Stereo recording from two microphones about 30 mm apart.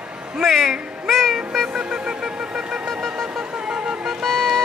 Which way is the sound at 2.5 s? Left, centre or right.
Centre.